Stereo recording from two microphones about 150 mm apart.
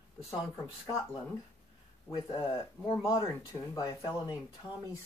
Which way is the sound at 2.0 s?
20° left (ahead or behind).